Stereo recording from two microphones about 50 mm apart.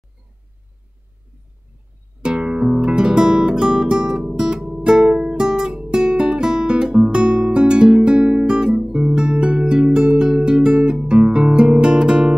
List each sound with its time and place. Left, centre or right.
2.2 s guitar: right